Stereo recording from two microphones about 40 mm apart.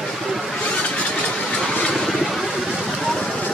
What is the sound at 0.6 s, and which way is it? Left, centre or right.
Vehicle, left.